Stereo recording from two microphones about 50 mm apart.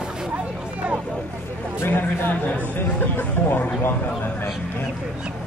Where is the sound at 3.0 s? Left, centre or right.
Left.